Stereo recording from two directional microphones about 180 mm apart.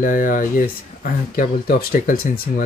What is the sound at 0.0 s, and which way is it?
Speech, 50° left (ahead or behind).